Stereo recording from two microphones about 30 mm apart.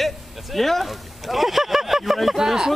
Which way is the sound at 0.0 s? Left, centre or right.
Centre.